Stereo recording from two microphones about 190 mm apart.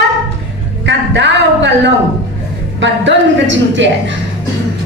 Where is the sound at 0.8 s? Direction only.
70° right (ahead or behind).